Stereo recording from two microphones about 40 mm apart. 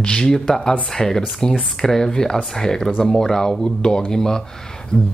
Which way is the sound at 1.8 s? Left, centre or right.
Centre.